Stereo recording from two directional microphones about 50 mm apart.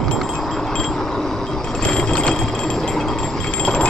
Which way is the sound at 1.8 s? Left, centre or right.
Centre.